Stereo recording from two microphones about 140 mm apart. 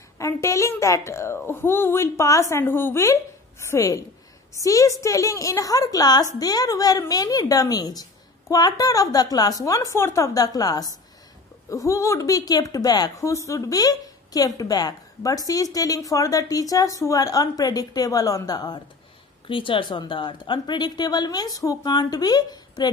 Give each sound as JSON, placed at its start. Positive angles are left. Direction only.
{"t": 0.2, "sound": "a woman's voice", "side_deg": 20}